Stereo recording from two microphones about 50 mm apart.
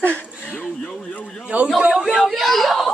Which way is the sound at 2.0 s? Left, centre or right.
Centre.